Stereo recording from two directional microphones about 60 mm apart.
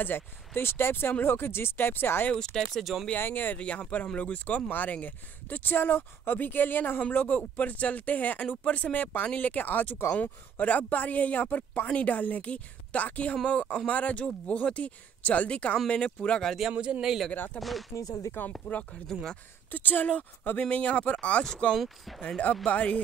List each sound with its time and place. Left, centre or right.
0.6 s speech: left
2.3 s speech: centre
2.6 s speech: centre
3.2 s speech: left
3.5 s speech: centre
16.7 s a man's voice: right
17.0 s speech: centre
17.3 s speech: left
17.6 s speech: centre
17.9 s speech: left
18.7 s speech: left
21.7 s speech: centre
22.7 s speech: left